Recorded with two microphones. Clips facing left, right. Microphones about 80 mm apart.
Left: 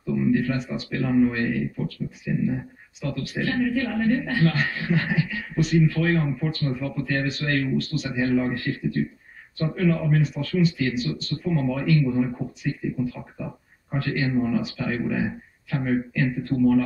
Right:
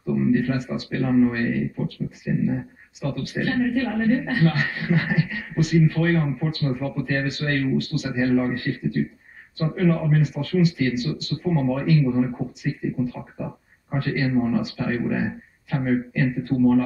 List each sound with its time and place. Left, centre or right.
0.0 s speech: right
16.5 s speech: right